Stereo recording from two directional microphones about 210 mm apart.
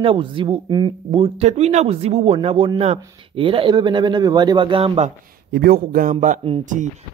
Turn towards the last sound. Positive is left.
turn(degrees=-35)  # may be behind; listen again after turning